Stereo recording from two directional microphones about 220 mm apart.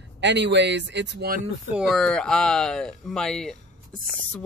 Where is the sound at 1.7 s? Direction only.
Centre (ahead or behind).